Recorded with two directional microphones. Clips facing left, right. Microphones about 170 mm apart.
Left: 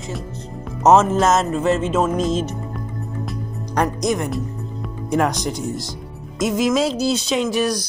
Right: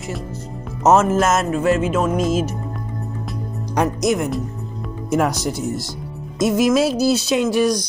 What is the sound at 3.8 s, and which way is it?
Speech, 10° right (ahead or behind).